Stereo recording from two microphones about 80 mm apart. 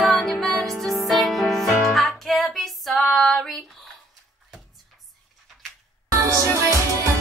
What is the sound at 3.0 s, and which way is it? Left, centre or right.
Female singing, centre.